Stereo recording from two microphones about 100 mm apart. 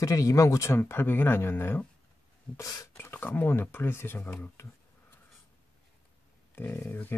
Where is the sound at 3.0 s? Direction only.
20° left (ahead or behind).